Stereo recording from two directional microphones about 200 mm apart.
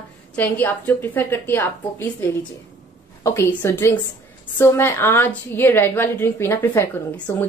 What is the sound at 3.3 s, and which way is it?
A woman's voice, 10° left (ahead or behind).